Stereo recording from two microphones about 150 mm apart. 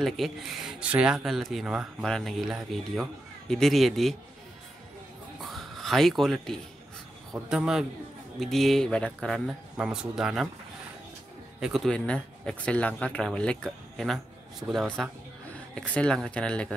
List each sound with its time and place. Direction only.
0.0 s speech: centre (ahead or behind)
5.4 s a sound: centre (ahead or behind)
7.4 s speech: 5° right (ahead or behind)
11.6 s speech: centre (ahead or behind)